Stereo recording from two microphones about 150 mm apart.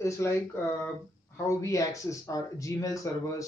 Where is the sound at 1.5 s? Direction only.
20° left (ahead or behind).